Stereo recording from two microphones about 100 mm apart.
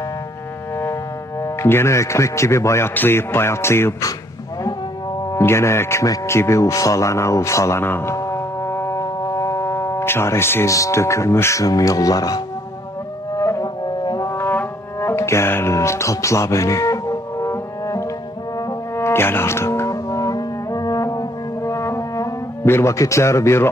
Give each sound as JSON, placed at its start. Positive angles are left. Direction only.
{"t": 1.4, "sound": "speech", "side_deg": 25}
{"t": 5.3, "sound": "speech", "side_deg": 25}
{"t": 13.4, "sound": "music", "side_deg": 30}
{"t": 13.8, "sound": "brass instrument", "side_deg": 45}
{"t": 14.3, "sound": "music", "side_deg": 25}
{"t": 18.9, "sound": "brass instrument", "side_deg": 25}